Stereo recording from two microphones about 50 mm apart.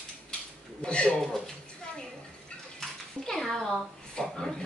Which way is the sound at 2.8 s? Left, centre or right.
Centre.